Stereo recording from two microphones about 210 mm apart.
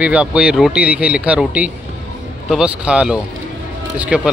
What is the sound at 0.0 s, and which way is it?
Speech, 5° right (ahead or behind).